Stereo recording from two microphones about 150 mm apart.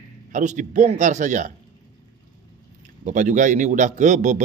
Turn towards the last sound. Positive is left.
turn(degrees=-55)  # may be behind; listen again after turning